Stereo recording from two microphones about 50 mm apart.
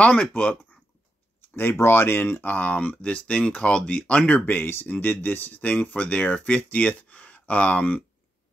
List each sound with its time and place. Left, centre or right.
0.0 s speech: left
1.5 s speech: left
2.4 s speech: left
4.3 s speech: left